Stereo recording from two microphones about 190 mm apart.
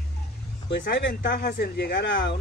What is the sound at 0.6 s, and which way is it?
Speech, 65° left (ahead or behind).